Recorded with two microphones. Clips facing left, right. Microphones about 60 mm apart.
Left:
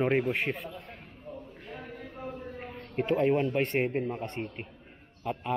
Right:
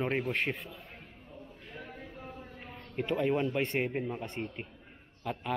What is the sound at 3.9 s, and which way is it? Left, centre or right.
Speech, centre.